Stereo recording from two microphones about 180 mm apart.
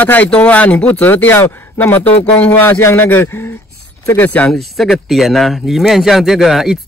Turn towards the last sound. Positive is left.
turn(degrees=0)  # may be behind; listen again after turning